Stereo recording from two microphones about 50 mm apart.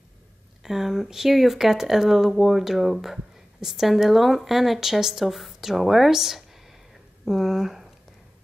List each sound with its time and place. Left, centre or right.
0.7 s speech: centre